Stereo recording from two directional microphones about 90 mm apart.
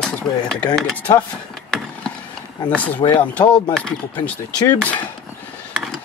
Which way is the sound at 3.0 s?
70° left (ahead or behind).